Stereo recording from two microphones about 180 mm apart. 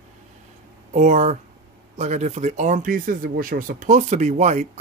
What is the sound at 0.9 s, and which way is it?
Speech, 40° right (ahead or behind).